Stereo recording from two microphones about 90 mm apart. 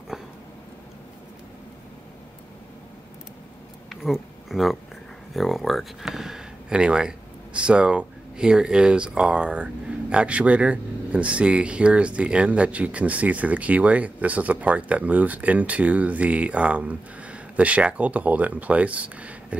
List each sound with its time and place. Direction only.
3.9 s speech: centre (ahead or behind)